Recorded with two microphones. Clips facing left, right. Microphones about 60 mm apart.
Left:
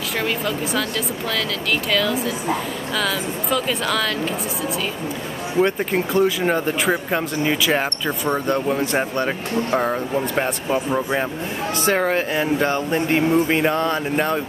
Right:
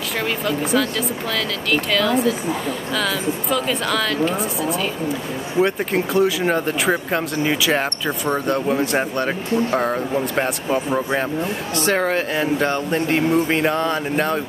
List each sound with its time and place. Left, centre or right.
0.2 s speech: centre
5.6 s speech: centre